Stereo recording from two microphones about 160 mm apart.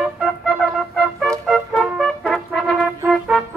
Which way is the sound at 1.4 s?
Centre (ahead or behind).